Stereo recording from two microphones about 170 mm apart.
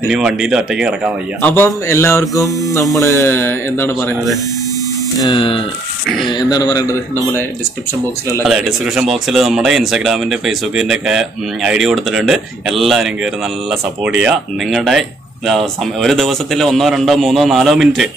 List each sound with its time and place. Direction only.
0.1 s speech: 5° right (ahead or behind)
1.4 s mains hum: 10° left (ahead or behind)
5.2 s speech: 30° left (ahead or behind)
8.5 s speech: centre (ahead or behind)